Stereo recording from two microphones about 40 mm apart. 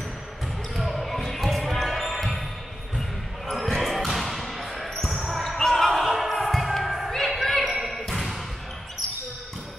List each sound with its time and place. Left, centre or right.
0.7 s basketball bounce: centre
3.4 s basketball bounce: centre
5.6 s basketball bounce: centre
7.1 s music: centre
7.6 s basketball bounce: centre